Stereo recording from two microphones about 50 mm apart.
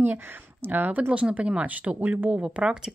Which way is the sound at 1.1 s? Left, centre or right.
Right.